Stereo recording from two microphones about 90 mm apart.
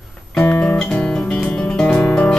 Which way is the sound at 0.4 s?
20° left (ahead or behind).